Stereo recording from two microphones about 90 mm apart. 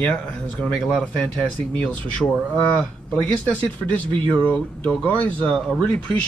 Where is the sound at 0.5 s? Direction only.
10° left (ahead or behind).